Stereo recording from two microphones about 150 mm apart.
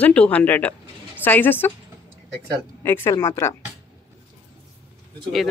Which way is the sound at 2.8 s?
15° left (ahead or behind).